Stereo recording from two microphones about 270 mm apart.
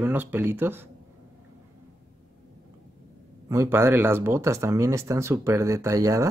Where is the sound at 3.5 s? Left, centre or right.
Centre.